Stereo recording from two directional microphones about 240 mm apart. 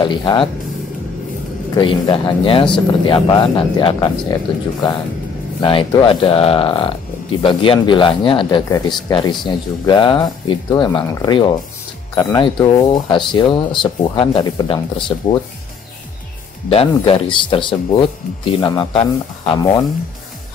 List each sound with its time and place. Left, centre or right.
0.0 s speech: centre
1.8 s speech: centre
5.6 s speech: left
16.6 s speech: left